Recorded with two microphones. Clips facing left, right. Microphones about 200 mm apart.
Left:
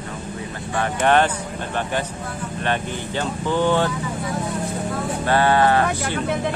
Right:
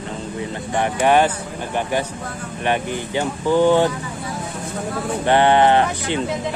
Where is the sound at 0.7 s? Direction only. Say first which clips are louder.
Right 2 dB; 15° right (ahead or behind).